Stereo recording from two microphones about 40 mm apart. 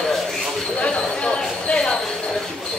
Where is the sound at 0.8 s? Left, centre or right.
Left.